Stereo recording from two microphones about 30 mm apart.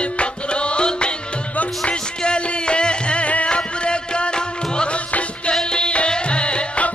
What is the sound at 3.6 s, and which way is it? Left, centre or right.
Music, left.